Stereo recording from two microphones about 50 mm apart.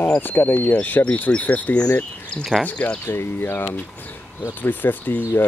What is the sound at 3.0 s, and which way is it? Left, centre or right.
Speech, left.